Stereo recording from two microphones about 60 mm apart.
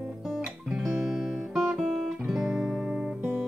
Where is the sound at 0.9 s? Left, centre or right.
Centre.